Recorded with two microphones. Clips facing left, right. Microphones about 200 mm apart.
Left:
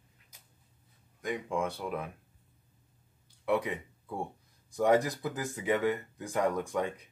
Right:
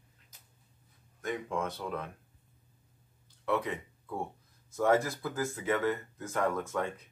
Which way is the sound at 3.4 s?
15° left (ahead or behind).